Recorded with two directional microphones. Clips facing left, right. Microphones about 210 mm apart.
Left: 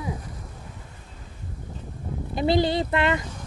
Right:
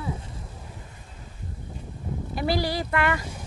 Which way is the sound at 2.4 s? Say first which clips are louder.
Left 5 dB; 20° left (ahead or behind).